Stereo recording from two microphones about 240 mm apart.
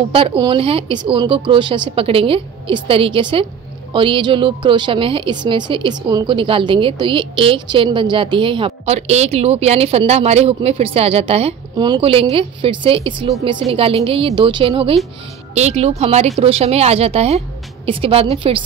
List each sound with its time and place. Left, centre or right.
0.1 s a woman's voice: right